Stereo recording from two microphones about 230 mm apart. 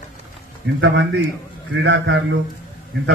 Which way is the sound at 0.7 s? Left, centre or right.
Right.